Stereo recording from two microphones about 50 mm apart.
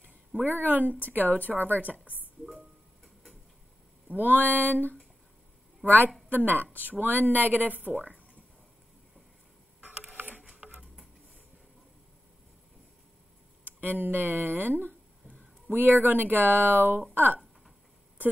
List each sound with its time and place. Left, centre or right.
0.4 s speech: right
1.6 s a woman's voice: left
4.1 s speech: right
5.9 s speech: right
9.8 s a sound: right
10.4 s a sound: centre
13.7 s speech: right